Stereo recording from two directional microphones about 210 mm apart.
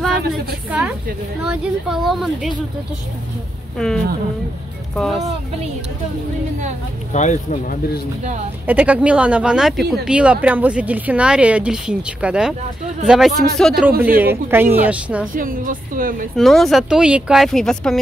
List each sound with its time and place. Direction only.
0.7 s speech: 5° right (ahead or behind)
3.7 s speech: 5° left (ahead or behind)
7.1 s speech: 35° left (ahead or behind)
8.6 s speech: 5° right (ahead or behind)
14.0 s speech: 10° right (ahead or behind)
15.3 s a woman's voice: 40° right (ahead or behind)
16.3 s speech: centre (ahead or behind)